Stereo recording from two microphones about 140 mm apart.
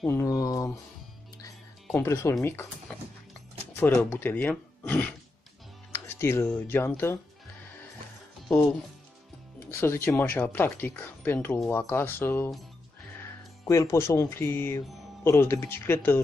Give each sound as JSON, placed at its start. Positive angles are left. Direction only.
{"t": 0.0, "sound": "a sound", "side_deg": 15}
{"t": 2.0, "sound": "speech", "side_deg": 20}
{"t": 5.9, "sound": "music", "side_deg": 15}
{"t": 6.7, "sound": "speech", "side_deg": 15}
{"t": 9.7, "sound": "speech", "side_deg": 15}
{"t": 13.7, "sound": "speech", "side_deg": 20}